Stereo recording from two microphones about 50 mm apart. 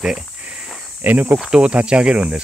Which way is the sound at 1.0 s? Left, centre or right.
Right.